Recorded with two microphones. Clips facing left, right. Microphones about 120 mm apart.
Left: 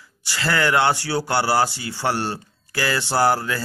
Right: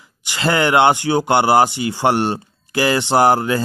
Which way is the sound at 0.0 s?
20° right (ahead or behind).